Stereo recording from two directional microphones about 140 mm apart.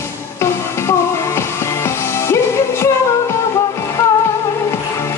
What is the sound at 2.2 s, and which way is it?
Music, 20° left (ahead or behind).